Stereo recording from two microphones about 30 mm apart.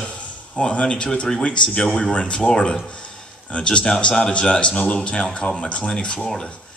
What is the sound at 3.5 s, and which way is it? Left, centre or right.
Speech, left.